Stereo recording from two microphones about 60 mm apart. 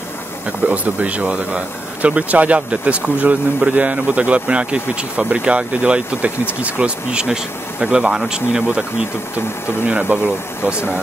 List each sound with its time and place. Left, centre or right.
0.5 s speech: right
9.8 s speech: right